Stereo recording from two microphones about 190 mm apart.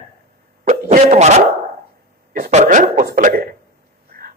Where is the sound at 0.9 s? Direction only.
35° right (ahead or behind).